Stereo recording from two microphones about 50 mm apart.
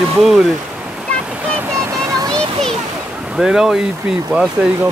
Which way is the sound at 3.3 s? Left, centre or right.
Centre.